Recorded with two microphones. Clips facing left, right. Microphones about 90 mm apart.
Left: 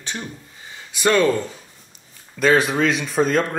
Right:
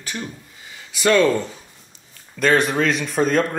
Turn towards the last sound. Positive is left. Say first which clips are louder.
# even
turn(degrees=0)  # may be behind; listen again after turning